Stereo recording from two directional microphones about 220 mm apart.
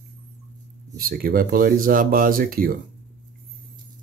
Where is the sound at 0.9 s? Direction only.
40° right (ahead or behind).